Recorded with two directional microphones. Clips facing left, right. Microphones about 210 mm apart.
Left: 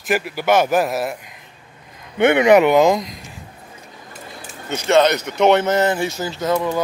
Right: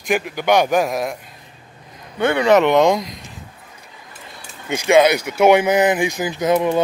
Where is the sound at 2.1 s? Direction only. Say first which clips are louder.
Left 3 dB; 20° left (ahead or behind).